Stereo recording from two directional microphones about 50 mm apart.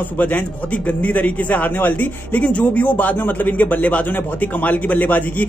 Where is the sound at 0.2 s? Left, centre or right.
Left.